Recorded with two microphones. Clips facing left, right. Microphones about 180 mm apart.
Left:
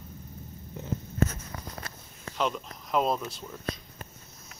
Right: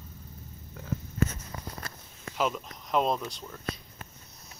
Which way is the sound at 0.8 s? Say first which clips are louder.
Left 5 dB; 20° left (ahead or behind).